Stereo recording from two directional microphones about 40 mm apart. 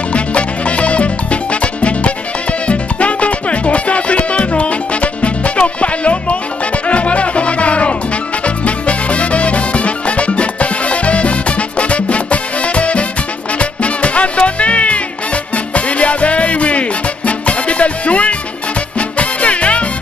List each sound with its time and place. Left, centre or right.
0.1 s music: left